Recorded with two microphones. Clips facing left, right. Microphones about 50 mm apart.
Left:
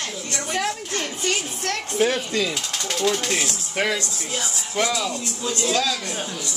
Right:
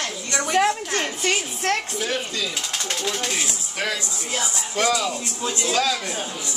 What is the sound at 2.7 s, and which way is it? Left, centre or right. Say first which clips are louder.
A child's voice: left 6 dB; centre.